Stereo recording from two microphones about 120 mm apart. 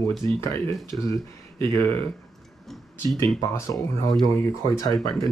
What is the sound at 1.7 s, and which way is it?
Speech, 20° left (ahead or behind).